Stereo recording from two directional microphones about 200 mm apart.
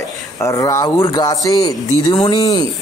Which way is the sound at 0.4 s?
15° left (ahead or behind).